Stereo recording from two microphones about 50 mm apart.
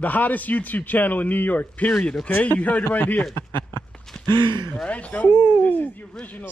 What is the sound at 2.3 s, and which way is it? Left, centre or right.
Speech, left.